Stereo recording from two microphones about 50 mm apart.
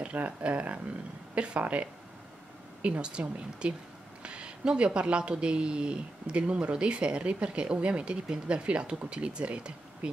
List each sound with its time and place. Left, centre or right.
0.0 s speech: right
2.8 s speech: right